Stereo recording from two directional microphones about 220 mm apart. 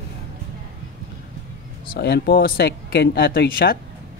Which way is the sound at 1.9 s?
45° left (ahead or behind).